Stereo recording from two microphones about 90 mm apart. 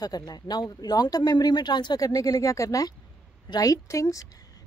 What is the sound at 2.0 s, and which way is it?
Speech, 40° left (ahead or behind).